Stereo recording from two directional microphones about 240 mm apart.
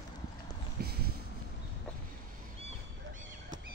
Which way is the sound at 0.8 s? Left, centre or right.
Right.